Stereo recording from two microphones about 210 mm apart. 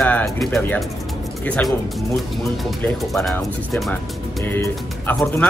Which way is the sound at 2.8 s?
Centre (ahead or behind).